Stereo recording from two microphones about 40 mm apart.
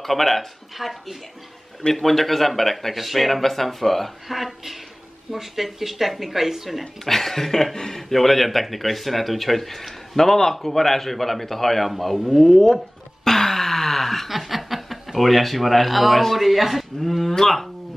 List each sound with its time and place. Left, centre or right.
0.0 s speech: centre
6.8 s speech: centre
13.2 s a sound: centre
15.1 s speech: centre